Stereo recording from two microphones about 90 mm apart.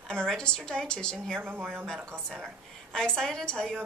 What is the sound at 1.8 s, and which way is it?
A woman's voice, 10° left (ahead or behind).